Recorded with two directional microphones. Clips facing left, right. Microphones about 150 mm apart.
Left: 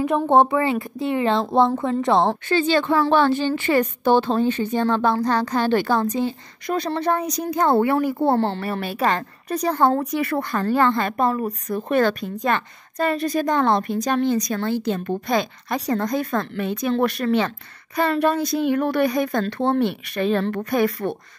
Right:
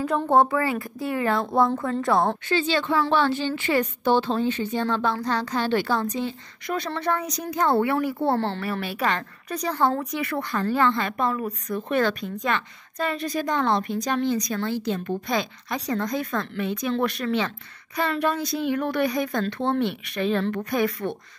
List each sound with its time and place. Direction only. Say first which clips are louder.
0.0 s speech: left 3 dB; 20° left (ahead or behind)
2.4 s a woman's voice: left 4 dB; 50° left (ahead or behind)